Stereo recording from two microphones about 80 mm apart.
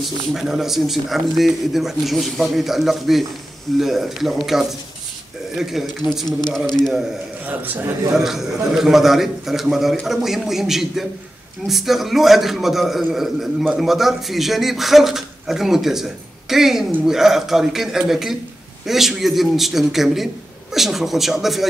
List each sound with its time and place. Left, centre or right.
0.3 s a man's voice: centre
7.4 s a man's voice: right
8.1 s a man's voice: centre